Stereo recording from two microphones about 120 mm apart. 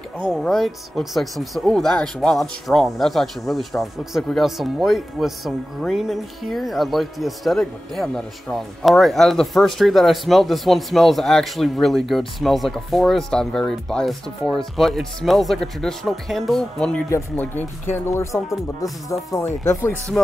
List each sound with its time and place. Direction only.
0.2 s speech: centre (ahead or behind)
17.1 s speech: 15° left (ahead or behind)